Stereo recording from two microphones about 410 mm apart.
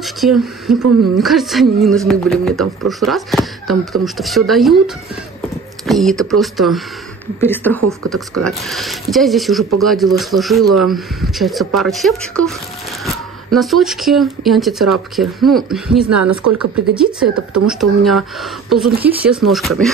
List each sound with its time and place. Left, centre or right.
0.0 s speech: centre
16.1 s speech: right
16.5 s speech: centre